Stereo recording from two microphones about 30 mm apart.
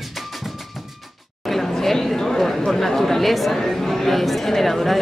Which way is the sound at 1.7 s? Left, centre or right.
Centre.